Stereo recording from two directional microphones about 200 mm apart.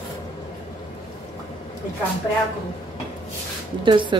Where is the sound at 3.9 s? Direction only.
25° right (ahead or behind).